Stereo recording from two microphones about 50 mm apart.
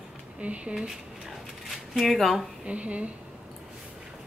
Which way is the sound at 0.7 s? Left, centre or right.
Centre.